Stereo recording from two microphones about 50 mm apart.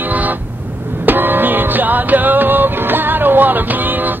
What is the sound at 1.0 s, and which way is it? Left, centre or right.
Music, right.